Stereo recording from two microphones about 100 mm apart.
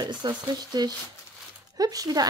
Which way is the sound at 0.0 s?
45° right (ahead or behind).